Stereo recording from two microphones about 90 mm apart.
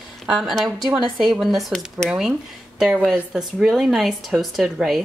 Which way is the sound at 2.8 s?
5° right (ahead or behind).